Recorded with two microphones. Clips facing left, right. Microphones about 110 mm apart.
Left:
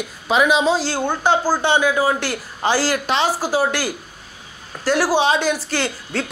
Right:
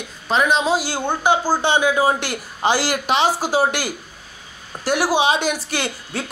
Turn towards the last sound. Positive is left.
turn(degrees=-20)  # may be behind; listen again after turning